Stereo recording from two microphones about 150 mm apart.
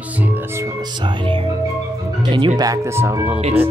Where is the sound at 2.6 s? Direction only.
20° right (ahead or behind).